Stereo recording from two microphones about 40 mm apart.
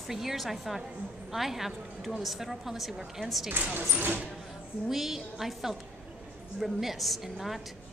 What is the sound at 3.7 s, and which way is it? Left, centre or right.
Speech, right.